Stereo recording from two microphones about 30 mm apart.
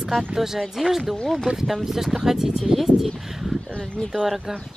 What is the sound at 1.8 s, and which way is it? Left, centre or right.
Speech, centre.